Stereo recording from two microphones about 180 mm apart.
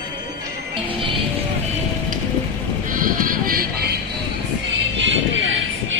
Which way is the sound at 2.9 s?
50° right (ahead or behind).